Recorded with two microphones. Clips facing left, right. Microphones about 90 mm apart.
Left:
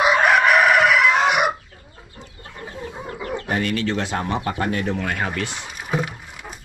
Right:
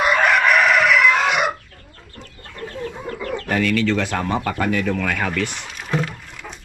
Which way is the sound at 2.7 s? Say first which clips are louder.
Right 3 dB; 15° left (ahead or behind).